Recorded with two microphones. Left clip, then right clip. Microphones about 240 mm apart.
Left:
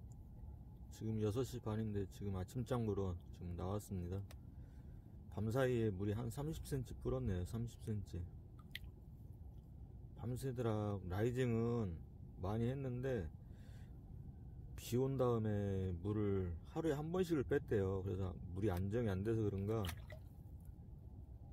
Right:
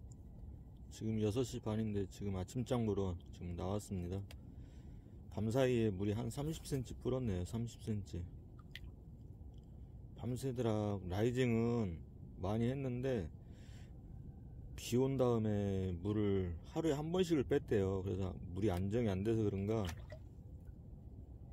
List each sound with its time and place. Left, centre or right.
0.9 s speech: centre
5.3 s speech: centre
10.1 s speech: centre
14.8 s speech: centre
19.8 s drip: centre